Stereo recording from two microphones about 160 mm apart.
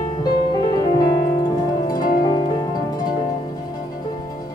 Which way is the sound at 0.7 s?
25° left (ahead or behind).